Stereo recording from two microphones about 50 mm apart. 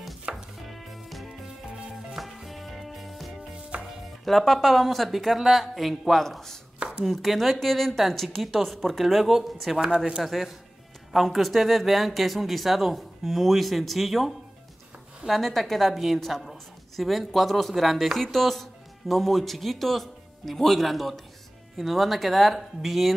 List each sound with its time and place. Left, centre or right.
0.3 s chopping: right
0.7 s music: centre
4.2 s a woman's voice: centre
6.2 s a woman's voice: centre
9.8 s speech: centre
10.2 s a woman's voice: centre